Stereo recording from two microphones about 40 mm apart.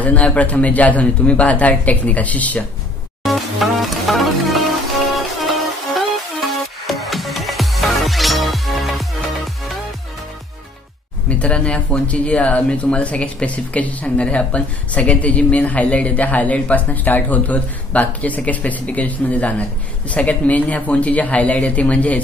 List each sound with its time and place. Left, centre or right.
0.0 s a woman's voice: left
3.3 s music: centre
11.2 s a woman's voice: left